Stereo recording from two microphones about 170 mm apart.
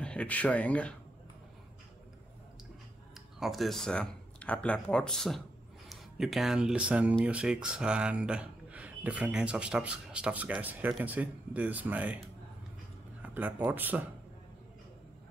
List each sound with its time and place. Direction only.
0.0 s speech: 5° left (ahead or behind)
3.3 s a man's voice: centre (ahead or behind)
13.2 s speech: 10° right (ahead or behind)